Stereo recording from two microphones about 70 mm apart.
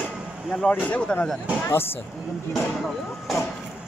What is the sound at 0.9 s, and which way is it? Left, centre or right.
Speech, left.